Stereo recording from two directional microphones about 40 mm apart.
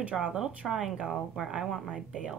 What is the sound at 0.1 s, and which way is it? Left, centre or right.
A woman's voice, centre.